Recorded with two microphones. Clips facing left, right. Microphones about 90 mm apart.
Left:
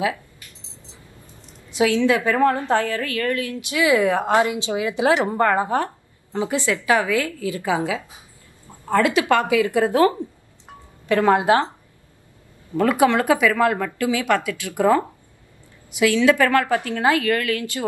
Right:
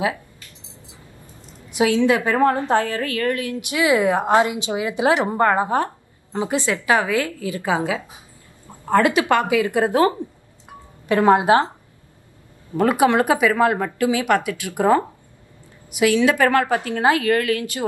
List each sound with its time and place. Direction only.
1.8 s a woman's voice: 20° right (ahead or behind)
9.2 s a woman's voice: 20° right (ahead or behind)
12.7 s a woman's voice: 20° right (ahead or behind)
16.0 s a woman's voice: 20° right (ahead or behind)